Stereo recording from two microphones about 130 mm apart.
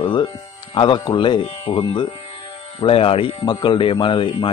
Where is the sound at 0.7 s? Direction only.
40° left (ahead or behind).